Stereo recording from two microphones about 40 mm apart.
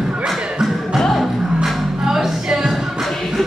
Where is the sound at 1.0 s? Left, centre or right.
Centre.